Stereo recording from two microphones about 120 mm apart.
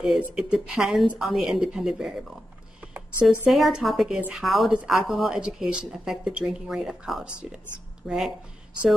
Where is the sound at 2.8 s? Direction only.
10° right (ahead or behind).